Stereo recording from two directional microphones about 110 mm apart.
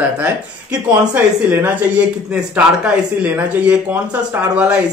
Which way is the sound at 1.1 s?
20° right (ahead or behind).